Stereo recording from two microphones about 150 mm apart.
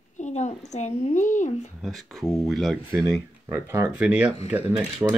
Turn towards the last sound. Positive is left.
turn(degrees=-20)  # may be behind; listen again after turning